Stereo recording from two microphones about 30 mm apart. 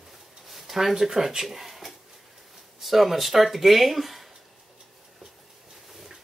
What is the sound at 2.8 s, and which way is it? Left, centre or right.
Speech, centre.